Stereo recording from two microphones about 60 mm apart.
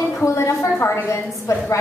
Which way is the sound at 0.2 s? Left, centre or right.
Left.